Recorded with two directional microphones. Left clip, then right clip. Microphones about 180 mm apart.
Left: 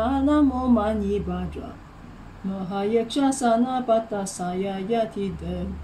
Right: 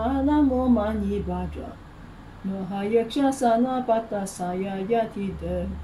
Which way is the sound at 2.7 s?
35° left (ahead or behind).